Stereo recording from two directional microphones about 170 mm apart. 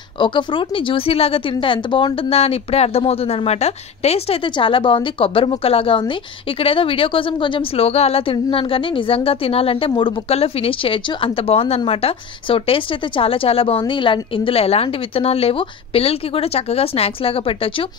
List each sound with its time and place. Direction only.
0.2 s speech: 30° left (ahead or behind)